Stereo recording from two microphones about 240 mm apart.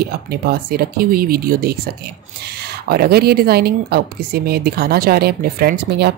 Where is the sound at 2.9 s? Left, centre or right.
Right.